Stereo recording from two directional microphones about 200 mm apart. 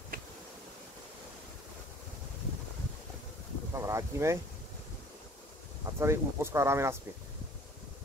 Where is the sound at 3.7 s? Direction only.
15° right (ahead or behind).